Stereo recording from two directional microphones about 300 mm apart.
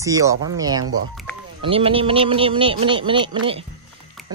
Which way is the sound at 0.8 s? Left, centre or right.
Right.